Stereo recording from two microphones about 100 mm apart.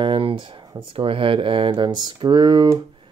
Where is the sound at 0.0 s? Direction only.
60° right (ahead or behind).